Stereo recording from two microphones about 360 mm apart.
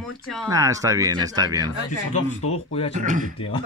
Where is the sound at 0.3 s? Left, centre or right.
Centre.